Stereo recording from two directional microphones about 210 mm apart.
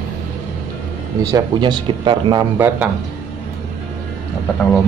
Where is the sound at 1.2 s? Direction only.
20° right (ahead or behind).